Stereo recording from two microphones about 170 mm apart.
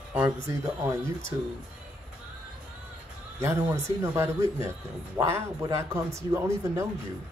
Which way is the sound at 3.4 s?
15° right (ahead or behind).